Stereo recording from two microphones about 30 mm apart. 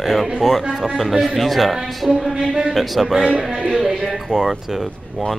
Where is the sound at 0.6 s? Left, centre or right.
Centre.